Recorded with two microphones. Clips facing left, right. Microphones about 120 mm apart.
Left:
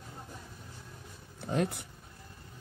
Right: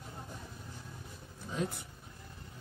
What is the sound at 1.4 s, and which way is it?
Speech, 70° left (ahead or behind).